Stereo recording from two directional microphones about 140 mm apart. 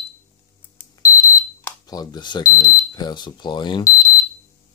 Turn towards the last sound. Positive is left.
turn(degrees=25)  # may be behind; listen again after turning